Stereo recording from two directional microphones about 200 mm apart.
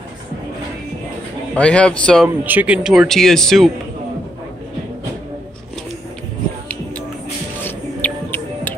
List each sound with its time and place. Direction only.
1.5 s speech: 5° left (ahead or behind)
2.2 s speech: 5° right (ahead or behind)
7.6 s music: 10° left (ahead or behind)